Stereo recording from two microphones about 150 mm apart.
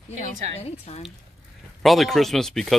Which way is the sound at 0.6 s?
45° left (ahead or behind).